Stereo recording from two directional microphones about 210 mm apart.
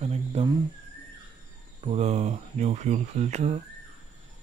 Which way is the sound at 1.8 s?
30° right (ahead or behind).